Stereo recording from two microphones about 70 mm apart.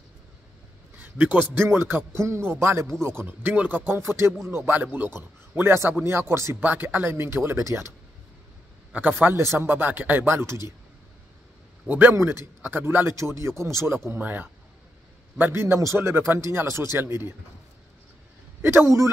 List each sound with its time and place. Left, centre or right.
0.9 s a man's voice: right
6.5 s a man's voice: right
8.9 s a man's voice: right
9.3 s a man's voice: right
12.1 s a man's voice: right
18.6 s a man's voice: right